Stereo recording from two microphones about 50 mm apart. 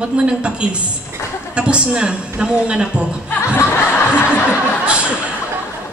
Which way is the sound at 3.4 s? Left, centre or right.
Left.